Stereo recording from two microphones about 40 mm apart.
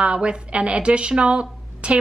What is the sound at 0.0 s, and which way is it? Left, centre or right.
A woman's voice, right.